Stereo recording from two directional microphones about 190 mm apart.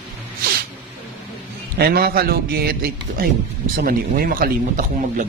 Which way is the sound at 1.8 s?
55° right (ahead or behind).